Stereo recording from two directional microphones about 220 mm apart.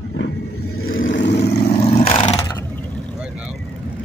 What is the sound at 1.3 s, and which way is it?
Vehicle, 30° left (ahead or behind).